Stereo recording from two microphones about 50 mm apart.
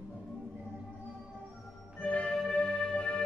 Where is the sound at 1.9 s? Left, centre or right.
Left.